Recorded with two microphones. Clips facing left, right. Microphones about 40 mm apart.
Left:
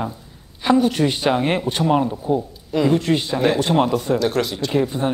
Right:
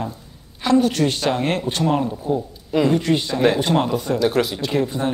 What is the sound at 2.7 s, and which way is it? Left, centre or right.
Speech, centre.